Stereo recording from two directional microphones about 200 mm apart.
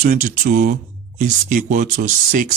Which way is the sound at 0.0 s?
40° right (ahead or behind).